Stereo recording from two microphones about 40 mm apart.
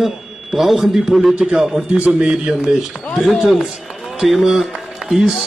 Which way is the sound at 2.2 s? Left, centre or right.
Right.